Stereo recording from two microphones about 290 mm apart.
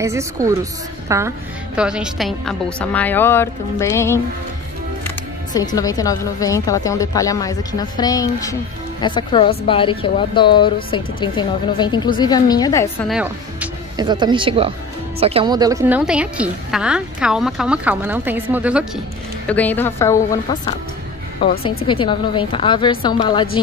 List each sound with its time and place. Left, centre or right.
0.0 s a woman's voice: centre
13.1 s a woman's voice: centre
21.8 s a woman's voice: centre